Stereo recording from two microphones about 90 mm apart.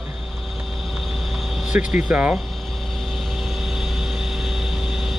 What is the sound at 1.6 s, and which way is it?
Speech, 10° right (ahead or behind).